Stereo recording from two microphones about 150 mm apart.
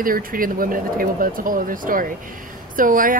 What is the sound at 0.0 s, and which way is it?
A woman's voice, 70° right (ahead or behind).